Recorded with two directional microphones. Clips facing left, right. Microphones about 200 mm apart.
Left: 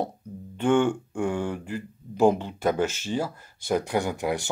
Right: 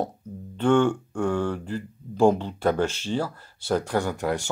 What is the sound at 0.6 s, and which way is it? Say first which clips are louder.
Speech: right 1 dB; 10° left (ahead or behind).